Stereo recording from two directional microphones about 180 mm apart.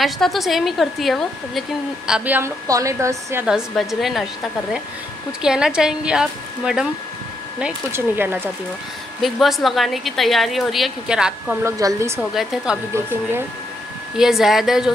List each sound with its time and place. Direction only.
0.0 s a woman's voice: centre (ahead or behind); by 3.4 s 15° right (ahead or behind)
3.4 s a woman's voice: 5° right (ahead or behind)
5.4 s a woman's voice: 5° right (ahead or behind)
9.2 s a woman's voice: centre (ahead or behind)
11.6 s a woman's voice: 15° right (ahead or behind)
12.2 s a woman's voice: centre (ahead or behind)
14.1 s a woman's voice: centre (ahead or behind)